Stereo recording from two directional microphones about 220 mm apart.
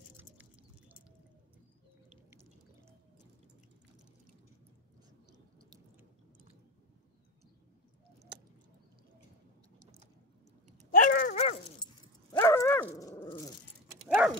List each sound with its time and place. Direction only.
0.2 s a sound: 10° right (ahead or behind)
5.6 s chewing: 15° right (ahead or behind)
11.0 s dog: 40° left (ahead or behind)
11.8 s dog: 15° left (ahead or behind)
14.0 s dog: 5° right (ahead or behind)